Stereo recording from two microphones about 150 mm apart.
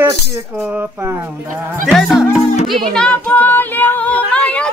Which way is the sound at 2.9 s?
5° left (ahead or behind).